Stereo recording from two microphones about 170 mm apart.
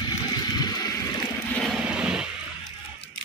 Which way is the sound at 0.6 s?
25° left (ahead or behind).